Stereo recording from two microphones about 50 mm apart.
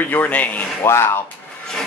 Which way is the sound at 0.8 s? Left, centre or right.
Left.